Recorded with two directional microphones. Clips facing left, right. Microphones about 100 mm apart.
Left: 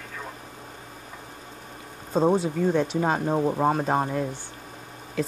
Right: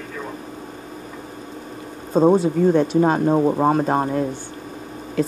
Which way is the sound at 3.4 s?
20° right (ahead or behind).